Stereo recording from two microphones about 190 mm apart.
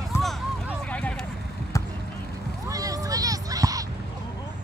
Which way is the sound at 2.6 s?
20° right (ahead or behind).